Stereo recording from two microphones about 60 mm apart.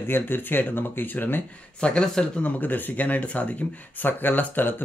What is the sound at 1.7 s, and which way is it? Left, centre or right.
Speech, centre.